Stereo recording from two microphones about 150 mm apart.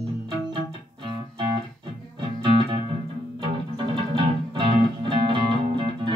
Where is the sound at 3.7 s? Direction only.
30° right (ahead or behind).